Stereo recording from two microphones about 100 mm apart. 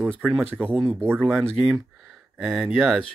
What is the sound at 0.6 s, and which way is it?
Speech, 15° right (ahead or behind).